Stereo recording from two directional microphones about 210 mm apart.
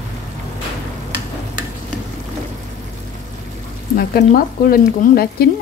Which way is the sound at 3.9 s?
45° left (ahead or behind).